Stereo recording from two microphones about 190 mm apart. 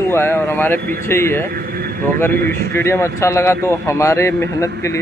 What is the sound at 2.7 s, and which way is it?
Speech, 15° left (ahead or behind).